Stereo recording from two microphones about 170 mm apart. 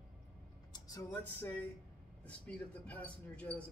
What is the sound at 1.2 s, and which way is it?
Speech, 10° left (ahead or behind).